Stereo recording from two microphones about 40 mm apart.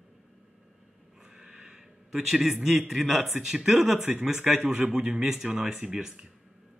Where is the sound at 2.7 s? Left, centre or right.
Centre.